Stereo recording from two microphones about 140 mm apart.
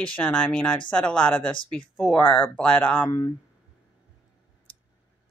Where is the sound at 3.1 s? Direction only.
20° left (ahead or behind).